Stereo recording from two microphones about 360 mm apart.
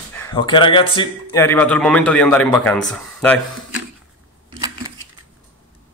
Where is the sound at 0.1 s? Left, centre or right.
Centre.